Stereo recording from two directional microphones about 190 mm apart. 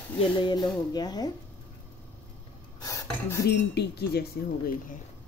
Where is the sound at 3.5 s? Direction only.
60° left (ahead or behind).